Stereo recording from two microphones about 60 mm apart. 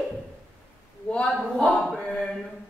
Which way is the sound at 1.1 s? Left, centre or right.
Centre.